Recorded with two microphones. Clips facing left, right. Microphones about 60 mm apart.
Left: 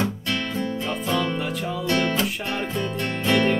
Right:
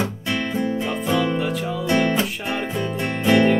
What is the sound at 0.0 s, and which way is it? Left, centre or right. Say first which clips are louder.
Music: right 2 dB; centre.